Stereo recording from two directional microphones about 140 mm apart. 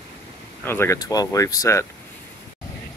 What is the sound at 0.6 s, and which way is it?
Speech, 20° left (ahead or behind).